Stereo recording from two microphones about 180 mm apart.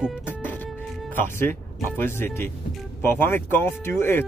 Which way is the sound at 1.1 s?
10° left (ahead or behind).